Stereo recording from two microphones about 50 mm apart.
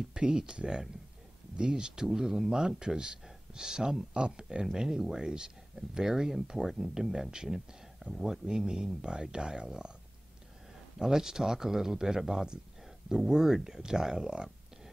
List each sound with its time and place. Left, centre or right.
0.1 s speech: centre
11.0 s speech: centre